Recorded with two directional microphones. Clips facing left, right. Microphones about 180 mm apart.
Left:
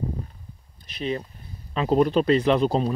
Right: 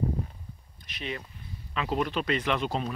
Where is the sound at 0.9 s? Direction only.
35° left (ahead or behind).